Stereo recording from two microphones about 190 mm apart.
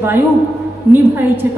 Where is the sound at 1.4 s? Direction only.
10° right (ahead or behind).